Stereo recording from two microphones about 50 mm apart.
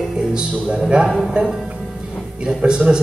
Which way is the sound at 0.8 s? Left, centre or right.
Centre.